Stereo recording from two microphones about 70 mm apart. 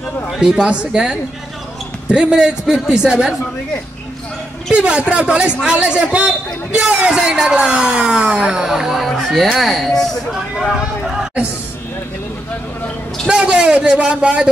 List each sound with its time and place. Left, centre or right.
0.3 s a man's voice: centre
4.7 s a man's voice: centre
10.7 s a man's voice: centre
13.3 s a man's voice: centre